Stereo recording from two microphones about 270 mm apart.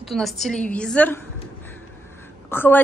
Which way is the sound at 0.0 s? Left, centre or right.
Centre.